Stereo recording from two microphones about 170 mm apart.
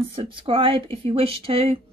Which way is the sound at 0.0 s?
35° right (ahead or behind).